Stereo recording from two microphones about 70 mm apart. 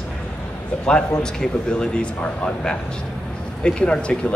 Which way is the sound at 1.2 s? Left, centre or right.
Centre.